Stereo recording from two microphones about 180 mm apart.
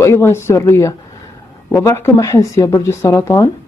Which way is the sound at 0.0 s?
15° left (ahead or behind).